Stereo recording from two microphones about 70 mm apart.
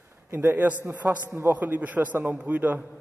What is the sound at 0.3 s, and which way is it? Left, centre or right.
A man's voice, right.